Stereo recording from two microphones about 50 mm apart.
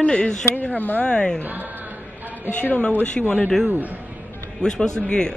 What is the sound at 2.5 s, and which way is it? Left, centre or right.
Speech, left.